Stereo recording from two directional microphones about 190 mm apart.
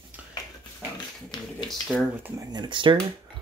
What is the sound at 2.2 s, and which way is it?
Speech, 20° right (ahead or behind).